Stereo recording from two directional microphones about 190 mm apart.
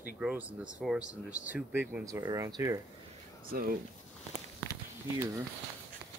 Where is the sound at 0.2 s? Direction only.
5° right (ahead or behind).